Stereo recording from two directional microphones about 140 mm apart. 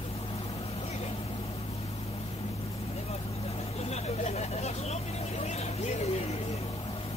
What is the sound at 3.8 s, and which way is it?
Vehicle, 50° left (ahead or behind).